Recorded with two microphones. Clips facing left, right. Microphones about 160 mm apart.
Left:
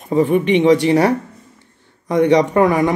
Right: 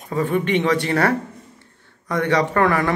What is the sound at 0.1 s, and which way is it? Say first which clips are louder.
Speech: left 6 dB; 20° left (ahead or behind).